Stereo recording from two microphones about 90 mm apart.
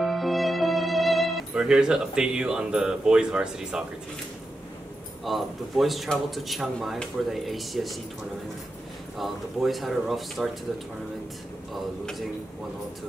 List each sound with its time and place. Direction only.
0.0 s music: centre (ahead or behind)
5.2 s speech: centre (ahead or behind)
9.2 s speech: centre (ahead or behind)
11.7 s speech: centre (ahead or behind)